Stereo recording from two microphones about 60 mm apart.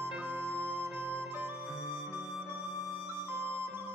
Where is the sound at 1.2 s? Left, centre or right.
Right.